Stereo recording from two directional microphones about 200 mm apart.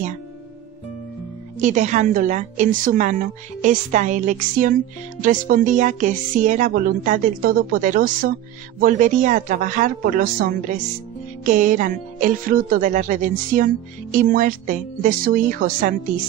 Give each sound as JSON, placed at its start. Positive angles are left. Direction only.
{"t": 1.6, "sound": "speech", "side_deg": -40}